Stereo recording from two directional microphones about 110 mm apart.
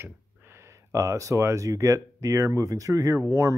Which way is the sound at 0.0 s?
25° right (ahead or behind).